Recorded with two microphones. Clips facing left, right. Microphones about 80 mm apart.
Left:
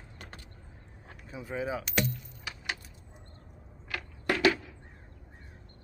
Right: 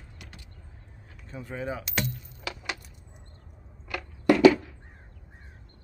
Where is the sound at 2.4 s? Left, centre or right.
Right.